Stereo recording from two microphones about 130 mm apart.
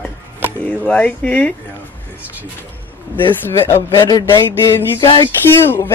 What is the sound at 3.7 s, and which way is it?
Speech, 35° left (ahead or behind).